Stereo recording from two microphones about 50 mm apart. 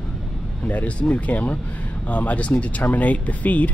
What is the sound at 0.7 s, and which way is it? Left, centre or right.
Speech, left.